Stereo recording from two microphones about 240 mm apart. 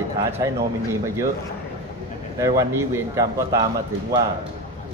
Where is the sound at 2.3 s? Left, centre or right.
Centre.